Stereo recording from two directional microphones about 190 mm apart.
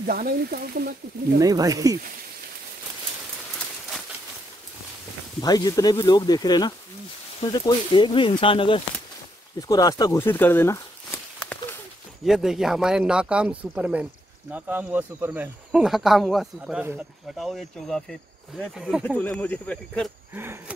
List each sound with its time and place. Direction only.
0.0 s speech: 50° right (ahead or behind)
1.4 s speech: 20° right (ahead or behind)
5.4 s speech: 20° left (ahead or behind)
12.3 s speech: centre (ahead or behind)
19.0 s speech: 5° left (ahead or behind)
20.3 s speech: 10° right (ahead or behind)